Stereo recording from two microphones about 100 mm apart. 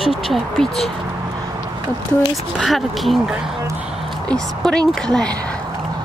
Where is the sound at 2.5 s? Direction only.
Centre (ahead or behind).